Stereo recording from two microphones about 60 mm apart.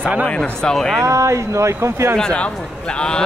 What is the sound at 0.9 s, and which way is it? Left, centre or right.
Speech, right.